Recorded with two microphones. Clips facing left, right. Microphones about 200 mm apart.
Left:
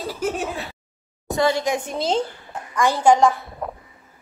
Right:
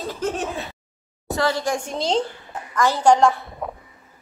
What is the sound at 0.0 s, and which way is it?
Speech, 10° left (ahead or behind).